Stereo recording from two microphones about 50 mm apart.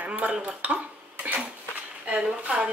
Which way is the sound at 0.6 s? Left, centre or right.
Right.